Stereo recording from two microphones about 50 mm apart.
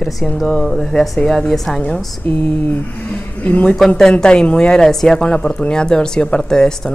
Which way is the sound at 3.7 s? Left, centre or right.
Centre.